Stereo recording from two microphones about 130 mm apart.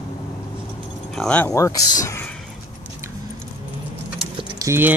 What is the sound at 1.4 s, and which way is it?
Speech, 25° left (ahead or behind).